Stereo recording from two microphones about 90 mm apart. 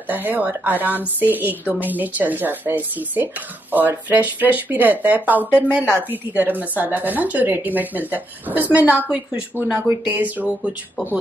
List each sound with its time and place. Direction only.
0.0 s speech: 20° right (ahead or behind)